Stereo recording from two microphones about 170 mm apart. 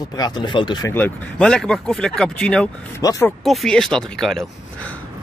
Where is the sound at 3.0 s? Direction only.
20° left (ahead or behind).